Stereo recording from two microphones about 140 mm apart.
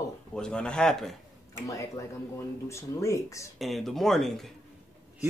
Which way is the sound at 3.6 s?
Centre (ahead or behind).